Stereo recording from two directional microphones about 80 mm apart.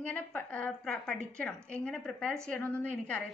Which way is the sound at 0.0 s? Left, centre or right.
Centre.